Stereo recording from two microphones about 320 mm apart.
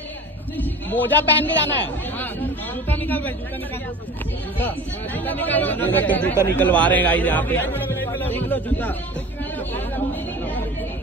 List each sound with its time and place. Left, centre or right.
0.6 s a man's voice: centre
4.6 s speech: centre
9.6 s chatter: centre